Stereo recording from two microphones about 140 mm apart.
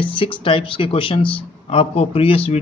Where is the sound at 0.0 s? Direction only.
35° left (ahead or behind).